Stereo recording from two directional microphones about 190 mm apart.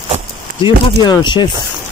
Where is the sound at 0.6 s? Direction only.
25° left (ahead or behind).